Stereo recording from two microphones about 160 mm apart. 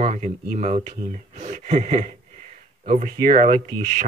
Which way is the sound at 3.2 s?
60° right (ahead or behind).